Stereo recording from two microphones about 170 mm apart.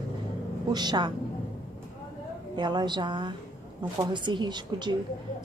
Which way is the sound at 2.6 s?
25° right (ahead or behind).